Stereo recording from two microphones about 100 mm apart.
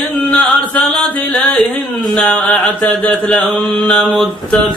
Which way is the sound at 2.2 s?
15° left (ahead or behind).